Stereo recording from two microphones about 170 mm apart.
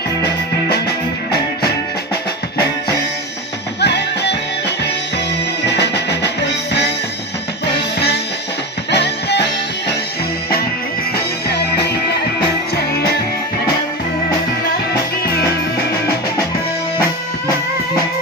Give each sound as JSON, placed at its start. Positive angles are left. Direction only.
{"t": 3.8, "sound": "music", "side_deg": 90}
{"t": 5.7, "sound": "music", "side_deg": 90}
{"t": 8.9, "sound": "music", "side_deg": 80}
{"t": 11.1, "sound": "music", "side_deg": 70}